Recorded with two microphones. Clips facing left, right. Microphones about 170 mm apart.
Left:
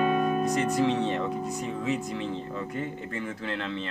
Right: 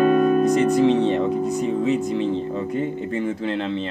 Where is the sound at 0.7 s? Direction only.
20° right (ahead or behind).